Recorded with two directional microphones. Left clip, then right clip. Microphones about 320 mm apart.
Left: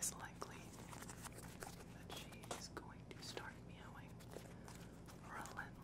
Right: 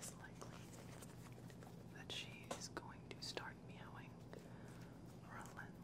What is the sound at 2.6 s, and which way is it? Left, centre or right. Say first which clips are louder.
Whispering: right 2 dB; centre.